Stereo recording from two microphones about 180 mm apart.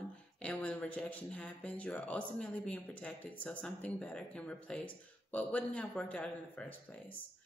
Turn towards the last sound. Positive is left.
turn(degrees=5)  # may be behind; listen again after turning